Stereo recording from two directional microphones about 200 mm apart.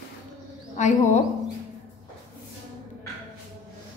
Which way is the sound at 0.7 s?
35° left (ahead or behind).